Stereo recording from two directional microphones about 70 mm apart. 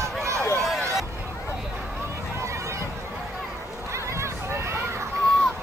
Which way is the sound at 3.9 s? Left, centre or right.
Right.